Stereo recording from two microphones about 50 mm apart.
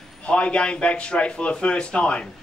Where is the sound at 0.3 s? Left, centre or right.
Left.